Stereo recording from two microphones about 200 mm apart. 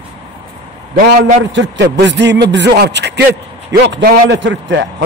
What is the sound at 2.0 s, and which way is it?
A man's voice, 60° right (ahead or behind).